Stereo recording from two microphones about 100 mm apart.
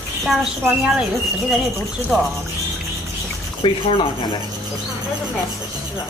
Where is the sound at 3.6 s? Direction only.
60° left (ahead or behind).